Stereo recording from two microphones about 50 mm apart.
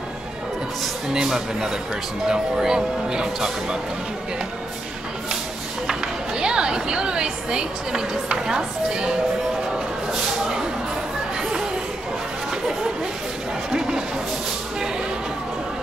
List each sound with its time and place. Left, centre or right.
1.1 s a woman's voice: centre
6.4 s a woman's voice: centre
13.7 s a sound: centre